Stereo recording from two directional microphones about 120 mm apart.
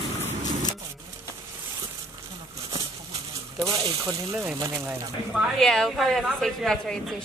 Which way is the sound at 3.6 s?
30° right (ahead or behind).